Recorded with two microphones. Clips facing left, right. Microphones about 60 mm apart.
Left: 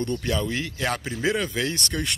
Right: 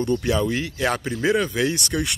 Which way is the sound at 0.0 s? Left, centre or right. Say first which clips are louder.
Right 5 dB; centre.